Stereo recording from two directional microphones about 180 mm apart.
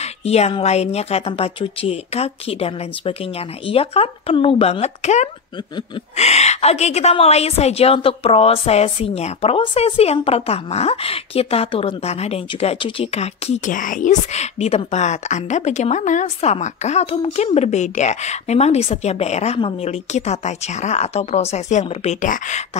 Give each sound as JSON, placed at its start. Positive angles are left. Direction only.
{"t": 0.0, "sound": "a woman's voice", "side_deg": 35}